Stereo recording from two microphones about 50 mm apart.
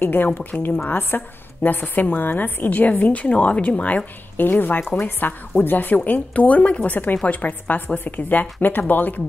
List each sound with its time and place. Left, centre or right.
0.0 s a woman's voice: left
2.7 s a woman's voice: left